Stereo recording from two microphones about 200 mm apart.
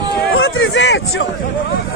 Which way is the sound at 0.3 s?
80° left.